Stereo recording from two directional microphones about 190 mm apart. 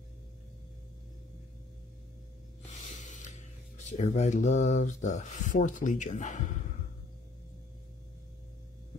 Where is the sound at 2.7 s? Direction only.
40° left (ahead or behind).